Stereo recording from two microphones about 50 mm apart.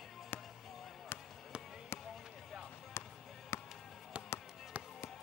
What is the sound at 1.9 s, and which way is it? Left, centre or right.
Basketball bounce, left.